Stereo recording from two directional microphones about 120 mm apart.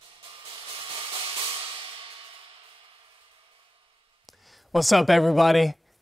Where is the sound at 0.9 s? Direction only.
45° right (ahead or behind).